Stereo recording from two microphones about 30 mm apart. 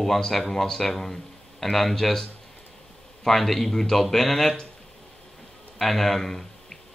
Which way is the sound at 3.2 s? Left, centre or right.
Centre.